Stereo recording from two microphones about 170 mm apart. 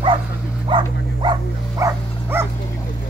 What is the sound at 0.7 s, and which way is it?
Dog, 30° right (ahead or behind).